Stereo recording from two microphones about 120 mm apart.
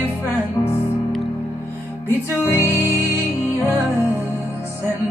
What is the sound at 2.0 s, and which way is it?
Music, 20° left (ahead or behind).